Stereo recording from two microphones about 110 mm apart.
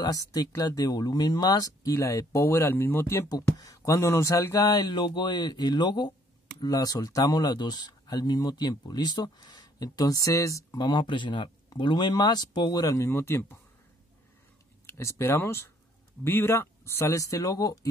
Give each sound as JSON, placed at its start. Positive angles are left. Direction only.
{"t": 0.0, "sound": "speech", "side_deg": 35}
{"t": 3.3, "sound": "speech", "side_deg": 35}
{"t": 10.8, "sound": "speech", "side_deg": 45}
{"t": 12.9, "sound": "speech", "side_deg": 25}
{"t": 14.9, "sound": "speech", "side_deg": 25}